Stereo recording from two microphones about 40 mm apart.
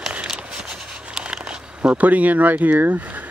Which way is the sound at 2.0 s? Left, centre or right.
Right.